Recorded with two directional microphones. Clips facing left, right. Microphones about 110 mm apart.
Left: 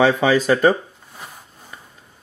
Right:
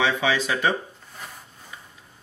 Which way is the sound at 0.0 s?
45° left (ahead or behind).